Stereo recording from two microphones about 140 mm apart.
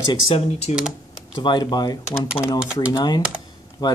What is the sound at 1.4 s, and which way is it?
Speech, 30° left (ahead or behind).